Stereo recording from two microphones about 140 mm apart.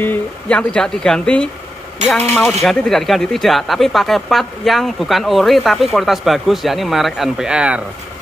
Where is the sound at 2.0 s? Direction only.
55° right (ahead or behind).